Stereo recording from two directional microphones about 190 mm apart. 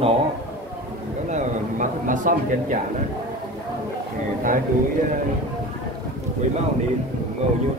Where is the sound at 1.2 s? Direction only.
40° right (ahead or behind).